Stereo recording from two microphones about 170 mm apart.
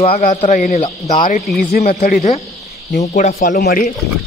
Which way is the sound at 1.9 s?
50° left (ahead or behind).